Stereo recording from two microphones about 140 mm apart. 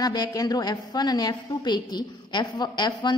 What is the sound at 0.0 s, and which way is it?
A woman's voice, 30° left (ahead or behind).